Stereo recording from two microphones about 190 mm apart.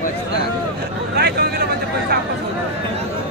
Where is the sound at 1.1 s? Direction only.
55° right (ahead or behind).